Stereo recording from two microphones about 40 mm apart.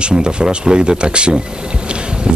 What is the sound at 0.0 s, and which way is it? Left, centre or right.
Speech, right.